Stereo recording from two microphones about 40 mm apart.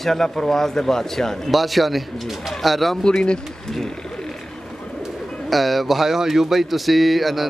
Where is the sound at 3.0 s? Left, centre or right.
Centre.